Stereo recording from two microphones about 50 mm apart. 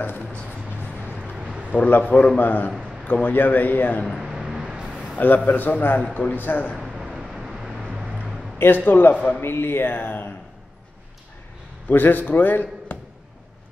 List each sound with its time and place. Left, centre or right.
1.7 s a man's voice: left
4.0 s a sound: centre
4.6 s a sound: right
5.1 s a man's voice: left
6.8 s vehicle: centre
8.5 s a man's voice: left
9.4 s speech: left
11.9 s a man's voice: left